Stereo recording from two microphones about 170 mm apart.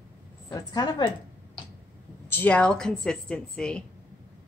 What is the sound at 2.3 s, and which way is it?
Speech, 10° left (ahead or behind).